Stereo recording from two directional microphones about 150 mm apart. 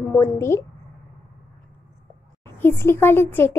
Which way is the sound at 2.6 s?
15° left (ahead or behind).